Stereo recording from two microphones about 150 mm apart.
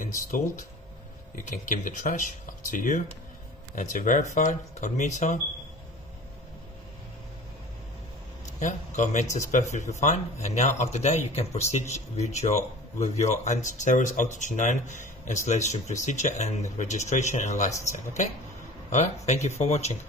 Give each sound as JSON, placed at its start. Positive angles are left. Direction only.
{"t": 0.0, "sound": "speech", "side_deg": 60}
{"t": 8.5, "sound": "speech", "side_deg": 55}